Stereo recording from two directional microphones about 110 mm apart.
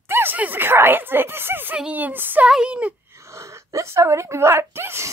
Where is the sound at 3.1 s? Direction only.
25° right (ahead or behind).